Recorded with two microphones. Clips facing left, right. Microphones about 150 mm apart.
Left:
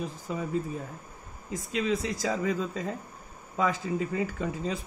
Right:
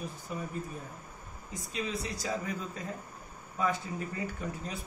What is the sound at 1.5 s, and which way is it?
Speech, 90° left.